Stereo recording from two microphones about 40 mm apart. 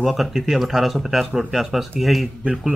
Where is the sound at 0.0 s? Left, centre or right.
Centre.